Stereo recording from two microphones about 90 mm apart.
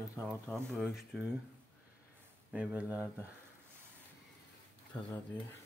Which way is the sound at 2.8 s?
15° right (ahead or behind).